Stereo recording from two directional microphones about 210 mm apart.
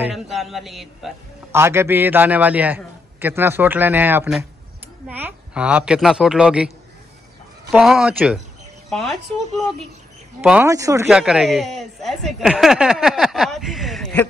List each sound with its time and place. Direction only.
0.0 s speech: centre (ahead or behind)
1.5 s a man's voice: 10° right (ahead or behind)
7.7 s speech: centre (ahead or behind)
10.4 s speech: 5° right (ahead or behind)
10.7 s a man's voice: 15° right (ahead or behind)
11.1 s speech: 5° right (ahead or behind)